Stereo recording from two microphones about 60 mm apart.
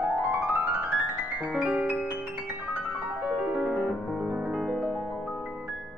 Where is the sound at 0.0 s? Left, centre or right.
Right.